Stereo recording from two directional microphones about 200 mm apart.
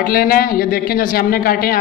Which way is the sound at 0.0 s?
50° left (ahead or behind).